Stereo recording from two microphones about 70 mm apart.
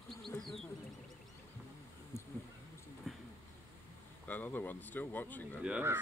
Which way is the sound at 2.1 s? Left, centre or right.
Left.